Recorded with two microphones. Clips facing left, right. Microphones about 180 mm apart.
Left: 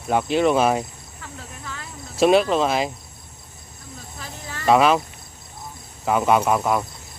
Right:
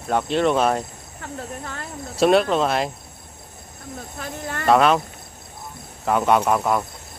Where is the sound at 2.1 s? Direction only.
Centre (ahead or behind).